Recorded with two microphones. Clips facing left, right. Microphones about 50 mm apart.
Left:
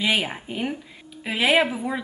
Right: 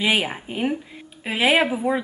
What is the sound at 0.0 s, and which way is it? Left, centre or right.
Speech, centre.